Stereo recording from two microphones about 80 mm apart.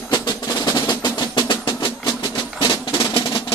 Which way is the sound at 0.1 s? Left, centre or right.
Left.